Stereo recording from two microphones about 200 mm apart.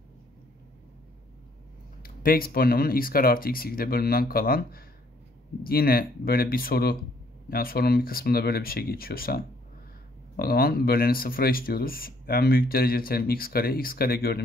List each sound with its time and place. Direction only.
2.0 s speech: 50° left (ahead or behind)